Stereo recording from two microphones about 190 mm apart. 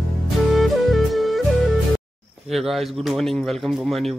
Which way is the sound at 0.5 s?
Centre (ahead or behind).